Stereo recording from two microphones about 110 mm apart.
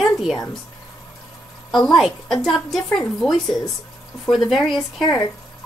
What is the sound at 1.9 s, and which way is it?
A woman's voice, centre (ahead or behind).